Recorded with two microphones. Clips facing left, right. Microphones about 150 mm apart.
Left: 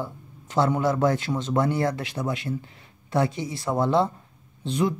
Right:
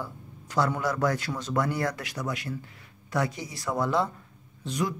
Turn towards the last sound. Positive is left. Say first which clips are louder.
# left 5 dB
turn(degrees=25)  # may be behind; listen again after turning